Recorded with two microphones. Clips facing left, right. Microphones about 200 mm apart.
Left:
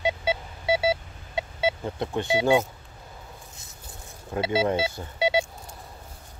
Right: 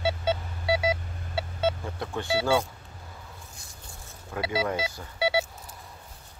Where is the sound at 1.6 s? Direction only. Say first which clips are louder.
Left 2 dB; 15° left (ahead or behind).